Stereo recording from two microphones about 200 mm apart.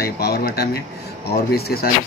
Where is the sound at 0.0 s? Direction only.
55° left (ahead or behind).